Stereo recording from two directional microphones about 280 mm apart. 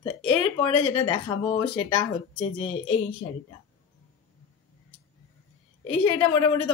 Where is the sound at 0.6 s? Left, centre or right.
Centre.